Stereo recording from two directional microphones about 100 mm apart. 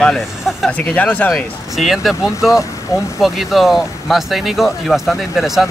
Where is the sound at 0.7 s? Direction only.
15° left (ahead or behind).